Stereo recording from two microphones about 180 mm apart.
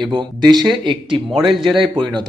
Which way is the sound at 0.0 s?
25° right (ahead or behind).